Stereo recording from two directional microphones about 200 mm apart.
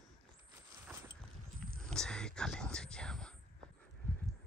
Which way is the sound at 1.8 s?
5° left (ahead or behind).